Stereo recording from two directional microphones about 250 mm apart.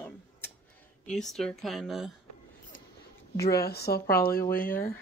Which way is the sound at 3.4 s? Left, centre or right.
Left.